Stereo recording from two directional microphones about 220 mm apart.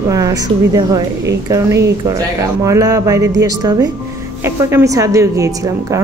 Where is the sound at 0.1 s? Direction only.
15° right (ahead or behind).